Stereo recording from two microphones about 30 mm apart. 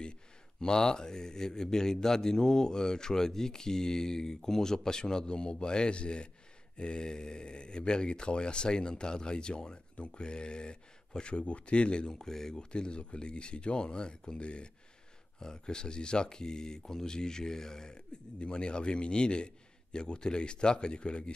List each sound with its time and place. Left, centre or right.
0.6 s speech: left
12.1 s speech: centre
12.7 s speech: left
15.3 s speech: left